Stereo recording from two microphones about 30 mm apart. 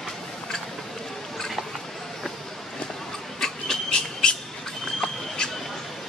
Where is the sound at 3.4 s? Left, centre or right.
Centre.